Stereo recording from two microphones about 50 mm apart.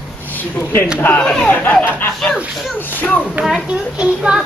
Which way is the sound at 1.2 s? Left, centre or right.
Centre.